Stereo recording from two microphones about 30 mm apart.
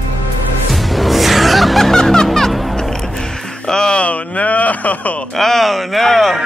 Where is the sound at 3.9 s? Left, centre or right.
Left.